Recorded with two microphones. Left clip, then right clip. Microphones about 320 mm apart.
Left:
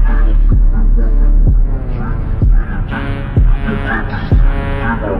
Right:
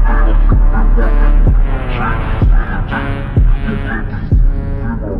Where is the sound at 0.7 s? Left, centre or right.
Right.